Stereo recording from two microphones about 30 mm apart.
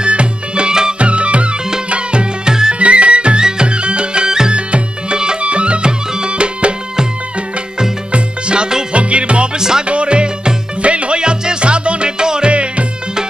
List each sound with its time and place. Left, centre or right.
0.0 s music: right
0.9 s music: right
4.6 s music: right
5.4 s music: right
8.1 s music: right
9.6 s music: right
9.8 s music: right